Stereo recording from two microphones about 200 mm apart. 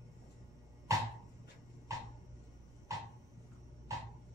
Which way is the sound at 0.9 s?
15° right (ahead or behind).